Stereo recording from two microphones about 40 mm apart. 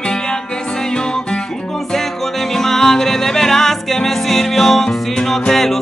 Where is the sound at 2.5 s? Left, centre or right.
Centre.